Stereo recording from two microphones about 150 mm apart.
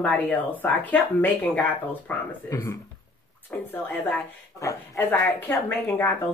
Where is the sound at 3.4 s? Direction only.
15° left (ahead or behind).